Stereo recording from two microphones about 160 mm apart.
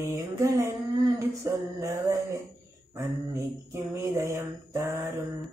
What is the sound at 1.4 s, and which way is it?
Mantra, 20° right (ahead or behind).